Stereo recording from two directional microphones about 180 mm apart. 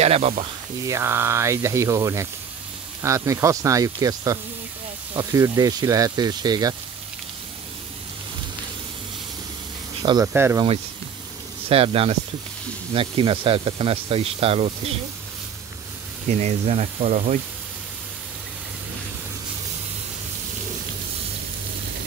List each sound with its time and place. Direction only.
0.0 s speech: 35° right (ahead or behind)
0.8 s speech: 15° right (ahead or behind)
10.0 s speech: 15° right (ahead or behind)
11.7 s speech: 30° right (ahead or behind)
16.3 s speech: 40° right (ahead or behind)